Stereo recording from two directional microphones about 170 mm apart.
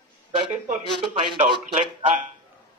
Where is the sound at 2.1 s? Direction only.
50° right (ahead or behind).